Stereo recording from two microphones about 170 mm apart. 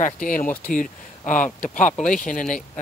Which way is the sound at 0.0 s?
50° left (ahead or behind).